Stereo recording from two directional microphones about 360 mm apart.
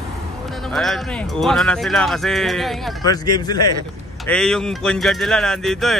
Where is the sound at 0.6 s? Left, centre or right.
Centre.